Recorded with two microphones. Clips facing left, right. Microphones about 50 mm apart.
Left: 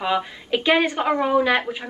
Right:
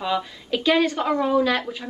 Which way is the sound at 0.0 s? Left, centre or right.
Left.